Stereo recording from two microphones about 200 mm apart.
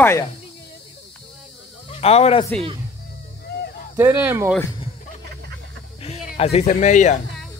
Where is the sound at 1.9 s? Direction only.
30° left (ahead or behind).